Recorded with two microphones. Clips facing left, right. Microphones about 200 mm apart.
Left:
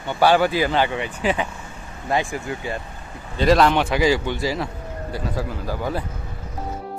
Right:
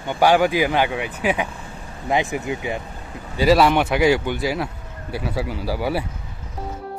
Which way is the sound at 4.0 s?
60° right (ahead or behind).